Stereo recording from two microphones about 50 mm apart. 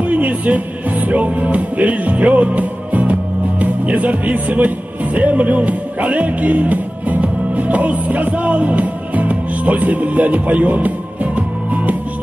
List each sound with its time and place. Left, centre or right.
0.0 s music: right